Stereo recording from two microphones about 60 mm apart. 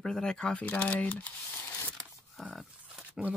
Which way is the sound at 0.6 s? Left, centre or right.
Left.